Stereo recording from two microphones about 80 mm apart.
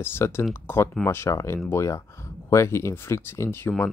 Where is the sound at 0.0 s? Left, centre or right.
Left.